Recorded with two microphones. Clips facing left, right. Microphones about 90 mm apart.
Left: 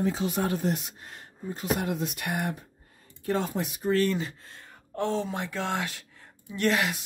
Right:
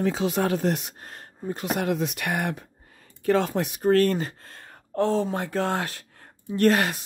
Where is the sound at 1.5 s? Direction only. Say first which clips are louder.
Right 3 dB; 85° right; by 7.0 s 45° right (ahead or behind).